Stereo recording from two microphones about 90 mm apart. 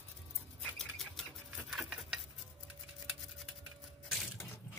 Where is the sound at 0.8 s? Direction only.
5° left (ahead or behind).